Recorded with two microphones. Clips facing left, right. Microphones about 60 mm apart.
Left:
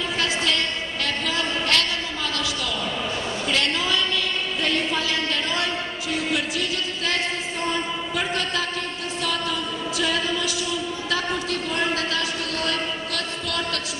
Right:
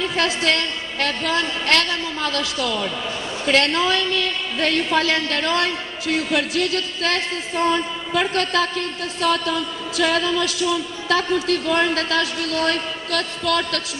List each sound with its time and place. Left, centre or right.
0.0 s a woman's voice: right